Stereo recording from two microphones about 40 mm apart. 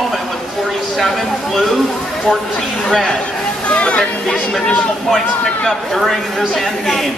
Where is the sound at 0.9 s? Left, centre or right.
Centre.